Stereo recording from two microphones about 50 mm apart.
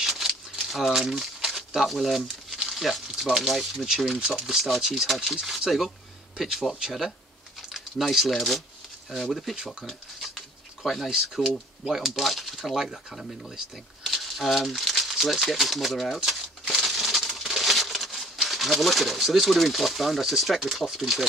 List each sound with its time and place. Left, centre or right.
0.0 s crumpling: centre
3.8 s speech: centre
9.8 s a sound: centre
11.1 s speech: centre
16.3 s crumpling: centre
20.8 s speech: centre